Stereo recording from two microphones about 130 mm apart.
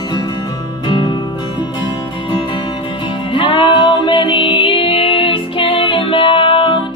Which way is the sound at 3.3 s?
40° left (ahead or behind).